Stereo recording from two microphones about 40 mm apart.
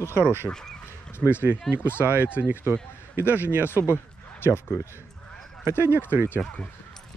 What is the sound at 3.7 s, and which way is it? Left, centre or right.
Speech, left.